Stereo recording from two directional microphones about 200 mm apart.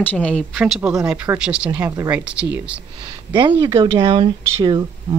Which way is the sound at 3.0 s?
25° right (ahead or behind).